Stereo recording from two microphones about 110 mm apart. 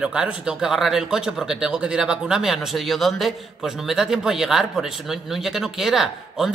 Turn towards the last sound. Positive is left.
turn(degrees=-5)  # may be behind; listen again after turning